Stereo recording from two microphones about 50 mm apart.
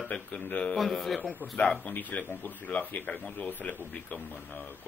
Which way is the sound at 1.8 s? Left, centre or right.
Left.